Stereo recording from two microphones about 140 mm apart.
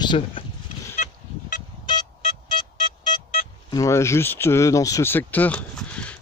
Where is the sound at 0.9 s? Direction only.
60° left (ahead or behind).